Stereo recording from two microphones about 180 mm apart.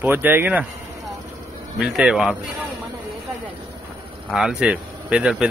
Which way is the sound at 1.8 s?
5° right (ahead or behind).